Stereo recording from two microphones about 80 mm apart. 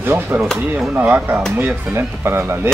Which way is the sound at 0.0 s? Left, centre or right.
Right.